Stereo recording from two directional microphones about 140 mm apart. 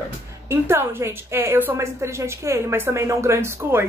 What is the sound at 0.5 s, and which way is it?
A woman's voice, 20° right (ahead or behind).